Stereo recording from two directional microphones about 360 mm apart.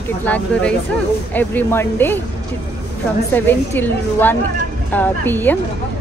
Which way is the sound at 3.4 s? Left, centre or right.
Centre.